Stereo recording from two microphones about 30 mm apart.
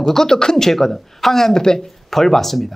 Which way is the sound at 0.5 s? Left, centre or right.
Centre.